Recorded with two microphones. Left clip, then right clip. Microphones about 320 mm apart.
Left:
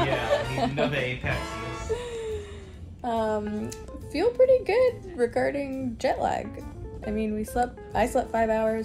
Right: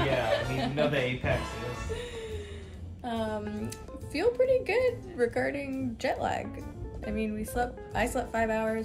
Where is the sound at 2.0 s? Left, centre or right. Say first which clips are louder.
Left 6 dB; centre.